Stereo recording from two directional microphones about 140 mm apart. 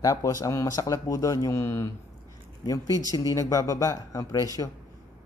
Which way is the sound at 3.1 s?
25° left (ahead or behind).